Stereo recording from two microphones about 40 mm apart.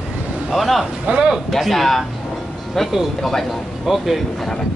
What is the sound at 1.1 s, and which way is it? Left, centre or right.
Speech, right.